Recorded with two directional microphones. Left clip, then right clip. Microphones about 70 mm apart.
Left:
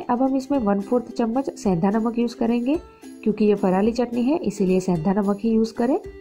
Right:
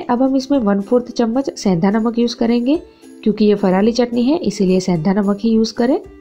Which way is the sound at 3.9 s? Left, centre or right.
Right.